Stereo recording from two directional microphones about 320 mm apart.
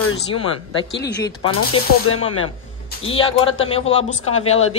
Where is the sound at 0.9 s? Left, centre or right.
Left.